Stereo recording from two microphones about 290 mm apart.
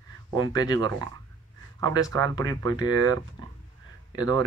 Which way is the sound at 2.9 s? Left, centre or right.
Right.